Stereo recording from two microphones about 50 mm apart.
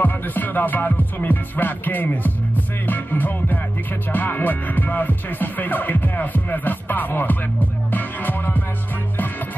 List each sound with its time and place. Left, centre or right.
0.0 s music: left